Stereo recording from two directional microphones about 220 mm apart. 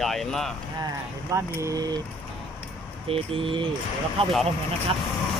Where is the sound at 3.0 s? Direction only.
25° right (ahead or behind).